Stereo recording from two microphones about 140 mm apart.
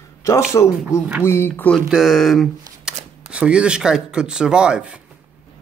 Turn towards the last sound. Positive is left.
turn(degrees=-5)  # may be behind; listen again after turning